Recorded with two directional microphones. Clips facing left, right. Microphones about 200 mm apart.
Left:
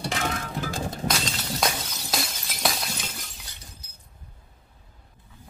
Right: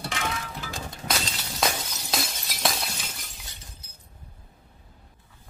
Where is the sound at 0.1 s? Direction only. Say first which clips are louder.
Left 3 dB; 45° left (ahead or behind).